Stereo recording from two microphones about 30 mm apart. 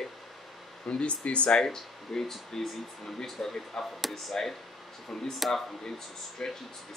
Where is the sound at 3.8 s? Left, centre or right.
Centre.